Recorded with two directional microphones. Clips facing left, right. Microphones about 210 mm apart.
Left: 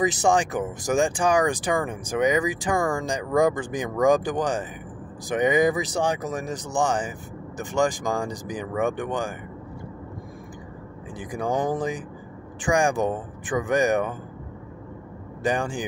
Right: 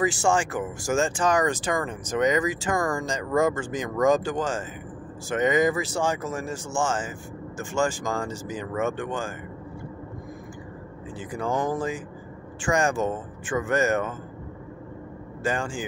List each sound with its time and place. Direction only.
0.0 s speech: 20° left (ahead or behind)
11.1 s speech: 15° left (ahead or behind)
15.4 s speech: 15° left (ahead or behind)